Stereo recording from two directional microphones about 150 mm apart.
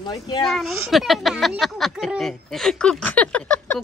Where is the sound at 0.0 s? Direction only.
25° left (ahead or behind).